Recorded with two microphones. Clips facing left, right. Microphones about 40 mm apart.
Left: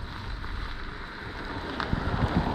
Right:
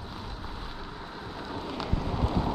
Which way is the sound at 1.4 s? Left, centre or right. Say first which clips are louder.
Left 1 dB; centre.